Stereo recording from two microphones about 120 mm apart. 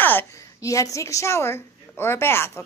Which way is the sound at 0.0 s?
15° left (ahead or behind).